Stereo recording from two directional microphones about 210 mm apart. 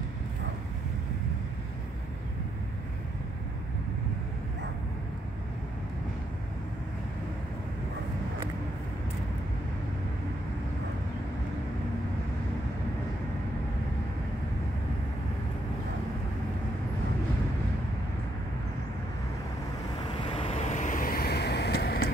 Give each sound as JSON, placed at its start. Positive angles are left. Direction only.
{"t": 20.2, "sound": "vehicle", "side_deg": 25}